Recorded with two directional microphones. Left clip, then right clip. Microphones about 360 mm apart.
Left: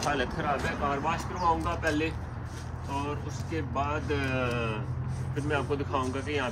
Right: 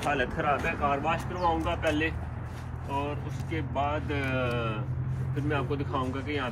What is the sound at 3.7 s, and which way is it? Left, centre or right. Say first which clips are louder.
Speech: right 1 dB; centre.